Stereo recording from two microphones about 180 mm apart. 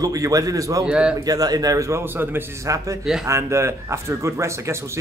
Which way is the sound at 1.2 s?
20° right (ahead or behind).